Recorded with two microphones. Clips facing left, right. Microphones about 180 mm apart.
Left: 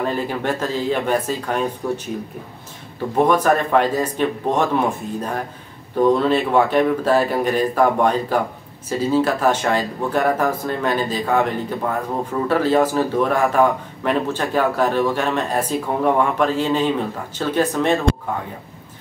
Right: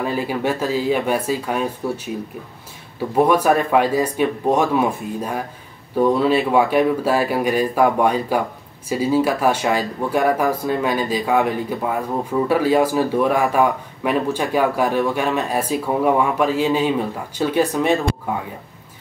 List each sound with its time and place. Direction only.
0.0 s speech: 10° right (ahead or behind)
3.2 s speech: 10° right (ahead or behind)